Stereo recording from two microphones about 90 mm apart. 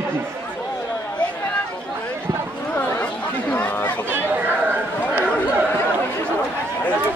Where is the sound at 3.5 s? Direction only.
20° left (ahead or behind).